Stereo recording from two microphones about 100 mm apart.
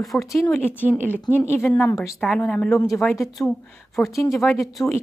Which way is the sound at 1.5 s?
20° left (ahead or behind).